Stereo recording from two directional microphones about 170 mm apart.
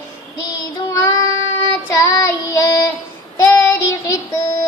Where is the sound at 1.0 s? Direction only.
20° left (ahead or behind).